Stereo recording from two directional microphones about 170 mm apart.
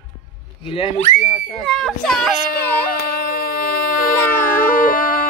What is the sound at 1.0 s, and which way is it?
Speech, 45° left (ahead or behind).